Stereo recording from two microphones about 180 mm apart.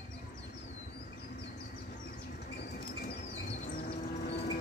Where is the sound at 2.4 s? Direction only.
65° left (ahead or behind).